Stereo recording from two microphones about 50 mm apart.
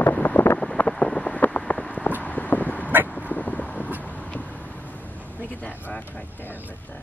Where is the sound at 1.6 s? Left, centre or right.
Left.